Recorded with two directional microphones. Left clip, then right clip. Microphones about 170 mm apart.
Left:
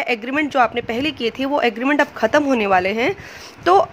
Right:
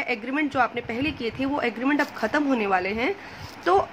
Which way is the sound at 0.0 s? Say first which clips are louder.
Left 6 dB; 45° left (ahead or behind).